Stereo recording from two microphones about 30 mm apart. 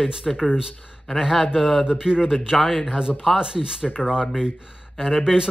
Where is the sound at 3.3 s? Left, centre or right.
Right.